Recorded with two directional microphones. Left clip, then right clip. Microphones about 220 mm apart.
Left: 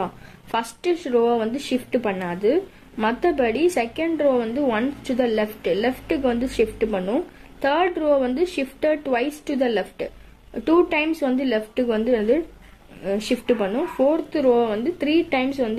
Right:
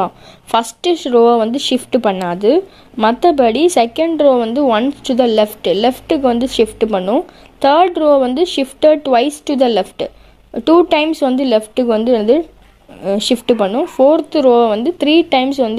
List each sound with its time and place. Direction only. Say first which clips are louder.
0.0 s a woman's voice: right 10 dB; 30° right (ahead or behind)